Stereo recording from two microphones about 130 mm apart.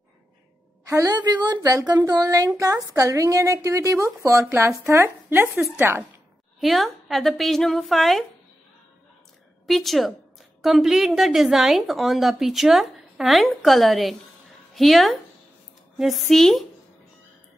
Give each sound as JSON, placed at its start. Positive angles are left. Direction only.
{"t": 0.8, "sound": "a woman's voice", "side_deg": -25}
{"t": 6.6, "sound": "a woman's voice", "side_deg": 0}
{"t": 9.7, "sound": "a woman's voice", "side_deg": 0}